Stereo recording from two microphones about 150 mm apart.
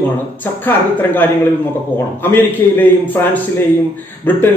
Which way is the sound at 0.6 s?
10° left (ahead or behind).